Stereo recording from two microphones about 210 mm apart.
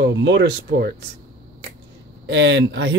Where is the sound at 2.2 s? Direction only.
60° right (ahead or behind).